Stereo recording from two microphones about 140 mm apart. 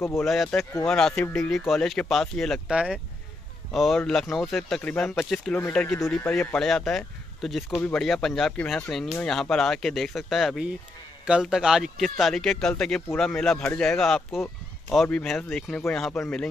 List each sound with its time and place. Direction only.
0.2 s speech: centre (ahead or behind)
13.6 s speech: 15° left (ahead or behind)
13.8 s speech: 5° left (ahead or behind)